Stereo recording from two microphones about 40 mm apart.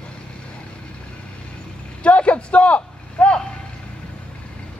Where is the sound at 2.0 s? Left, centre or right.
Left.